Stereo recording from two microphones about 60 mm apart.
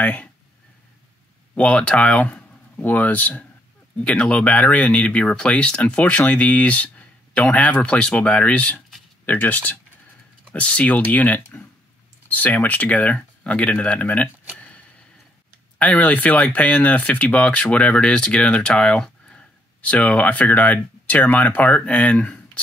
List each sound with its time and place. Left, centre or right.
0.0 s speech: left
1.5 s speech: left
15.8 s speech: left